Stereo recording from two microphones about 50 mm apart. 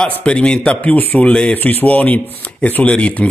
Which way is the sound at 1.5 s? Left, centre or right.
Left.